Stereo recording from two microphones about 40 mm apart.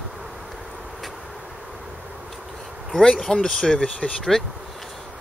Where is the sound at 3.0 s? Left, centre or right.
Centre.